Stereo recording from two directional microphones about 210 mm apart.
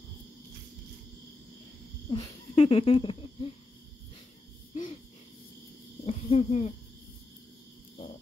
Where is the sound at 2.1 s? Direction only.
25° left (ahead or behind).